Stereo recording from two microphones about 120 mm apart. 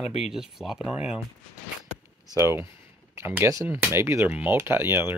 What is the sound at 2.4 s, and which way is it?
Speech, 25° right (ahead or behind).